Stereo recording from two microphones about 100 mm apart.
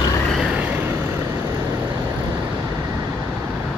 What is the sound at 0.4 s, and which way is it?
Vehicle, 15° right (ahead or behind).